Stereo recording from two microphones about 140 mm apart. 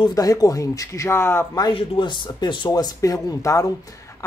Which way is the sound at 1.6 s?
35° left (ahead or behind).